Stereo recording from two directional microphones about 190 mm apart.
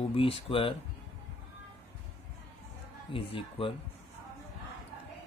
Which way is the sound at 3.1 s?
30° left (ahead or behind).